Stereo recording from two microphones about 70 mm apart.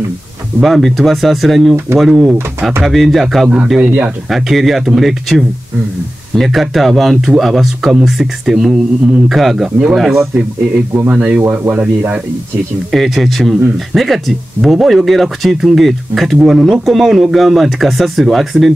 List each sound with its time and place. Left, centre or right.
0.6 s speech: centre
11.1 s speech: centre
12.9 s speech: centre